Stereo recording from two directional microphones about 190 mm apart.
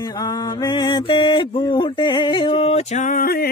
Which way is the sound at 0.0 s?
20° left (ahead or behind).